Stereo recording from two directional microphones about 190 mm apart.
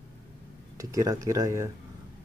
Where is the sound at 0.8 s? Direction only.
20° right (ahead or behind).